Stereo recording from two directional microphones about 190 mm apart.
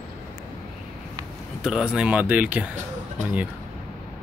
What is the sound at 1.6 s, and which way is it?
Speech, 5° right (ahead or behind).